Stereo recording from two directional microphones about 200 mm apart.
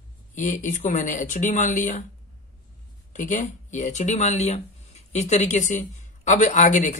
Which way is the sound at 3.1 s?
40° left (ahead or behind).